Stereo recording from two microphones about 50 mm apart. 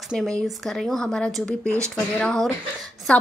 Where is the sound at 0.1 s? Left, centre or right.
Centre.